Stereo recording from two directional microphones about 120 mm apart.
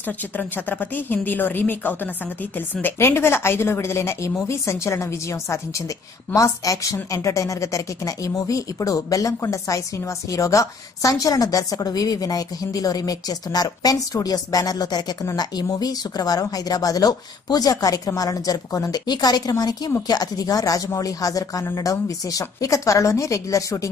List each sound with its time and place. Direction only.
0.4 s a woman's voice: 15° left (ahead or behind)